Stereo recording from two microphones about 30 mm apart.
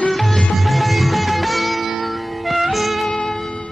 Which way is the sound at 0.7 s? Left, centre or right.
Centre.